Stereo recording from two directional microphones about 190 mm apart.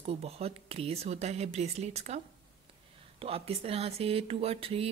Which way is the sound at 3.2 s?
30° right (ahead or behind).